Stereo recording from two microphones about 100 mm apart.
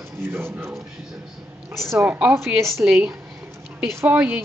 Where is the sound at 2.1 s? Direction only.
20° right (ahead or behind).